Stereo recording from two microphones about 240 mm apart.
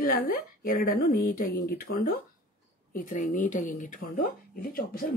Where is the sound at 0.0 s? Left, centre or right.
Left.